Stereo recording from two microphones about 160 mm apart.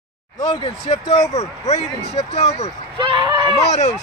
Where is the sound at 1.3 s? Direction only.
40° left (ahead or behind).